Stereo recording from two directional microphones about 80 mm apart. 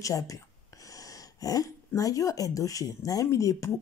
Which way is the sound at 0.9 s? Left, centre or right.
Left.